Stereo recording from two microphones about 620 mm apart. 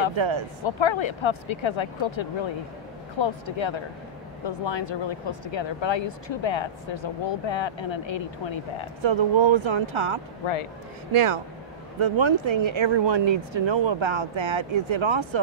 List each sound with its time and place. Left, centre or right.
0.1 s speech: right
0.7 s speech: left
9.0 s speech: right
10.4 s speech: left
12.0 s speech: right